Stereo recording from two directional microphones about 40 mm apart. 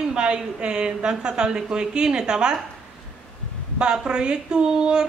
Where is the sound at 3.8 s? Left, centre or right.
Right.